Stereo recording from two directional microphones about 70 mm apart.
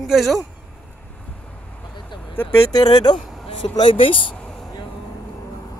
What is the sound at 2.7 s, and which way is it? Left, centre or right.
Speech, left.